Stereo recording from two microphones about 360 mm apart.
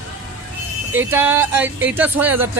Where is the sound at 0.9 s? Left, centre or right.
Centre.